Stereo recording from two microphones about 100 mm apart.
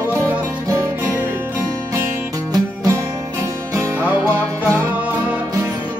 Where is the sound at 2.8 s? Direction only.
30° right (ahead or behind).